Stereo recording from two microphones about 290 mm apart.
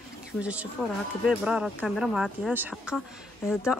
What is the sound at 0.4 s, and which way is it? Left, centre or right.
Speech, centre.